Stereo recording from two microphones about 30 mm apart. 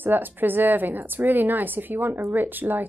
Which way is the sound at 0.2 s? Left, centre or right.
Right.